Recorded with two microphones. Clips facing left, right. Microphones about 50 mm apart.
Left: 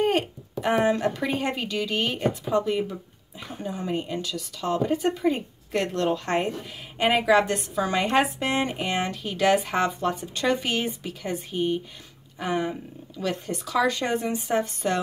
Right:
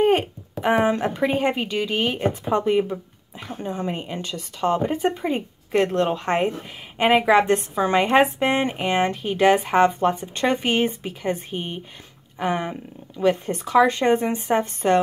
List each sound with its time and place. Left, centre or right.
0.0 s speech: centre
2.2 s speech: right
3.6 s speech: right
3.9 s a woman's voice: right